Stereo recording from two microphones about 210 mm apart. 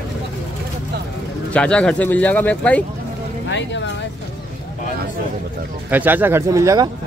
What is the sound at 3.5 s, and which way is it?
Speech, 60° left (ahead or behind).